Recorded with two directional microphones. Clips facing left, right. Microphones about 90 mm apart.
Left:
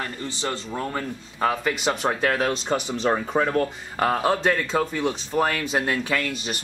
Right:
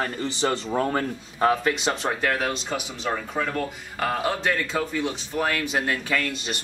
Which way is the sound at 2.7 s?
45° left (ahead or behind).